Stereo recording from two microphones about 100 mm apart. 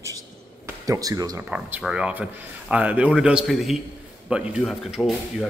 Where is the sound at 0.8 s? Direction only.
35° right (ahead or behind).